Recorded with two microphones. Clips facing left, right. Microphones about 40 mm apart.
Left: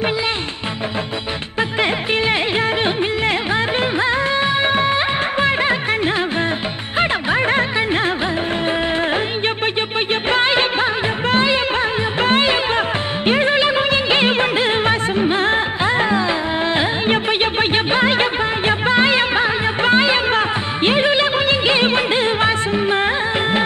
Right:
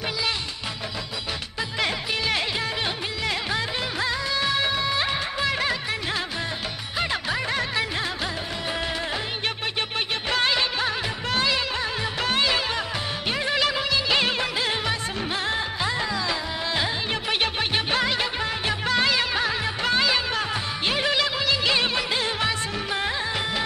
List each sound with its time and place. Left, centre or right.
1.6 s music: left
10.3 s music of bollywood: left